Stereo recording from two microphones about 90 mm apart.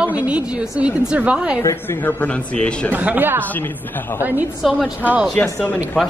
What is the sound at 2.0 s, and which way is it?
Speech, 15° left (ahead or behind).